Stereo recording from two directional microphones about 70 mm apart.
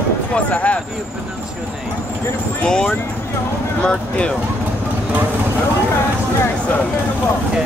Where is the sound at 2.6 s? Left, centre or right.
Centre.